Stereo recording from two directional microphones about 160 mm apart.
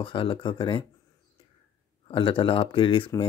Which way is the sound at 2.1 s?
30° left (ahead or behind).